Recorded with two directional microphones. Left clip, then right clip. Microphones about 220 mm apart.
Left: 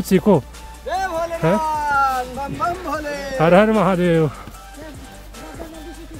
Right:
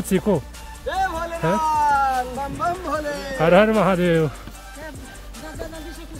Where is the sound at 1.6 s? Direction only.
Centre (ahead or behind).